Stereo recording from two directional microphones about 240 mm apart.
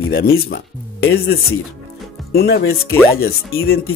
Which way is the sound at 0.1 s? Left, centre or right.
Left.